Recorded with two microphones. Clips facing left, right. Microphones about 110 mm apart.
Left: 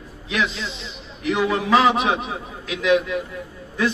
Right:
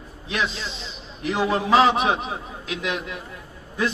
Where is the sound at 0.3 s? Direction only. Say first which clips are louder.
Left 2 dB; 35° right (ahead or behind).